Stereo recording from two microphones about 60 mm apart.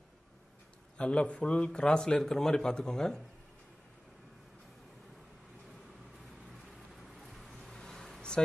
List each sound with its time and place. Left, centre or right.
0.9 s a man's voice: centre
7.0 s vehicle: centre
7.8 s a sound: centre